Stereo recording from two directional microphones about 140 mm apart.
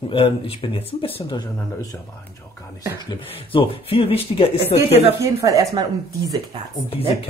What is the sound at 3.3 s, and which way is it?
Speech, 40° left (ahead or behind).